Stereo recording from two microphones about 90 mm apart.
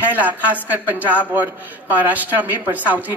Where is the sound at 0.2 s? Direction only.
20° right (ahead or behind).